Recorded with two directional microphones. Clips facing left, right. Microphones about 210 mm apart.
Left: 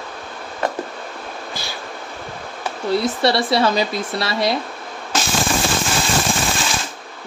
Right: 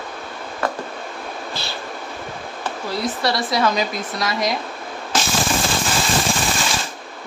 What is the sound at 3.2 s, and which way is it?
Speech, 30° left (ahead or behind).